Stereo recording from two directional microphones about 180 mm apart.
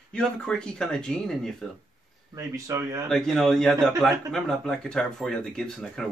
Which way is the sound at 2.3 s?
15° right (ahead or behind).